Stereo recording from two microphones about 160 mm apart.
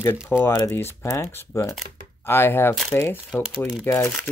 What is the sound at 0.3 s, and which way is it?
Speech, 20° left (ahead or behind).